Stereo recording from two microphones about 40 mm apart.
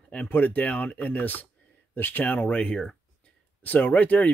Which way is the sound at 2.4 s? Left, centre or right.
Left.